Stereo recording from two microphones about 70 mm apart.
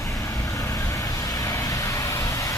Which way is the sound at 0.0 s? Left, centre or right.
Left.